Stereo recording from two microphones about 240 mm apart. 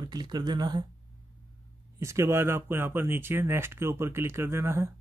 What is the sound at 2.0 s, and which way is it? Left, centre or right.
Speech, centre.